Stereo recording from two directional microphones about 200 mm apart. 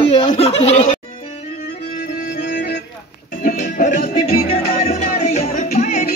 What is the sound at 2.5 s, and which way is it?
Organ, 45° left (ahead or behind).